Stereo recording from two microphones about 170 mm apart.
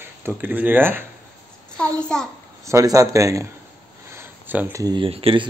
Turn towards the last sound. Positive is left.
turn(degrees=-35)  # may be behind; listen again after turning